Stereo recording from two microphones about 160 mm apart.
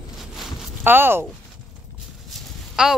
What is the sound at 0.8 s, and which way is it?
Speech, 15° right (ahead or behind).